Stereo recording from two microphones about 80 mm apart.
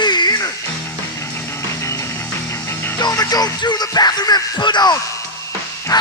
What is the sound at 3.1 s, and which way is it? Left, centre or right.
Music, left.